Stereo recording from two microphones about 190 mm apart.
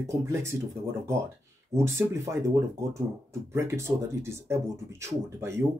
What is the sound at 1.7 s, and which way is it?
Speech, 15° right (ahead or behind).